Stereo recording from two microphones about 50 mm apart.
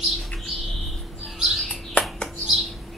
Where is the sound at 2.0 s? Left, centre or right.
Left.